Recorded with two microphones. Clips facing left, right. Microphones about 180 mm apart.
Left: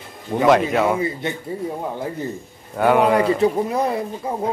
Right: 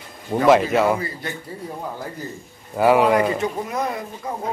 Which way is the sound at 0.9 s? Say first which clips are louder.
Left 5 dB; 20° left (ahead or behind).